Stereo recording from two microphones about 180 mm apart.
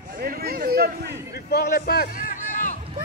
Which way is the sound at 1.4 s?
60° left (ahead or behind).